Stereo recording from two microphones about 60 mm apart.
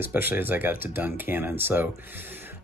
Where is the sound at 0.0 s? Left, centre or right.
Right.